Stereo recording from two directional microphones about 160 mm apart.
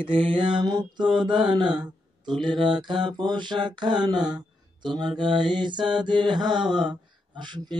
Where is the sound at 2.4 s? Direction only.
30° right (ahead or behind).